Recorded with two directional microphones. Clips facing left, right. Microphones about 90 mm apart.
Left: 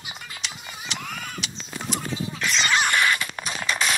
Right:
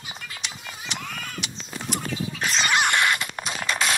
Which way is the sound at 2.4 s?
40° right (ahead or behind).